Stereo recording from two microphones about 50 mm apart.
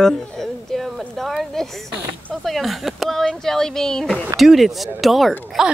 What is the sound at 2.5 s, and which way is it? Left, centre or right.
Speech, centre.